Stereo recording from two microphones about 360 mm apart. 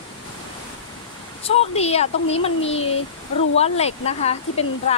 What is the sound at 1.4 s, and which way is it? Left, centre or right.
Speech, centre.